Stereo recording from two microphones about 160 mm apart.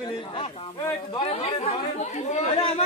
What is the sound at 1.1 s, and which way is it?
Chatter, 35° left (ahead or behind).